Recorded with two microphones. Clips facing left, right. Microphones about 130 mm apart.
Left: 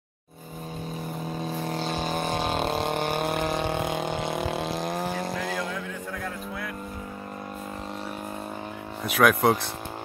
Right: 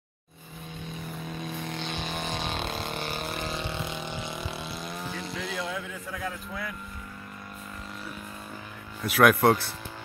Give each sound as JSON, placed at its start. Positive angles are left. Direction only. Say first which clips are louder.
{"t": 1.3, "sound": "vehicle", "louder": "left 6 dB", "side_deg": 35}
{"t": 5.7, "sound": "music", "louder": "left 2 dB", "side_deg": 0}
{"t": 9.1, "sound": "speech", "louder": "right 1 dB", "side_deg": 0}